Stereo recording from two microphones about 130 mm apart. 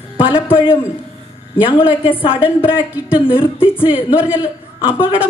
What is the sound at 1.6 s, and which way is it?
A woman's voice, 40° left (ahead or behind).